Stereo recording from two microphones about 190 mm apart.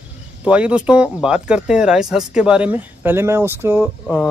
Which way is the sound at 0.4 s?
5° right (ahead or behind).